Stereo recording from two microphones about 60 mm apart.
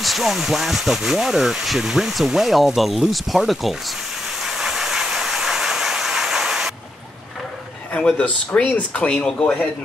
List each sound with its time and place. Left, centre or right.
0.0 s speech: centre
4.4 s vehicle: centre
8.2 s speech: centre